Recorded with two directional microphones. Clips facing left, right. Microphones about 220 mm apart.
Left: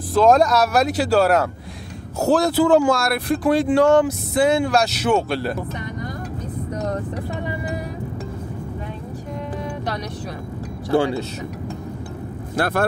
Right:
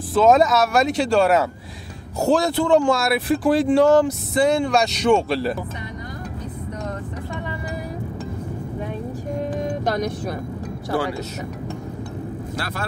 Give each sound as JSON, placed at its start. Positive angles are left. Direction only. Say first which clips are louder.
{"t": 0.1, "sound": "speech", "louder": "even", "side_deg": 0}
{"t": 9.6, "sound": "vehicle", "louder": "right 6 dB", "side_deg": -45}
{"t": 10.9, "sound": "speech", "louder": "left 5 dB", "side_deg": 25}
{"t": 12.5, "sound": "speech", "louder": "left 12 dB", "side_deg": 55}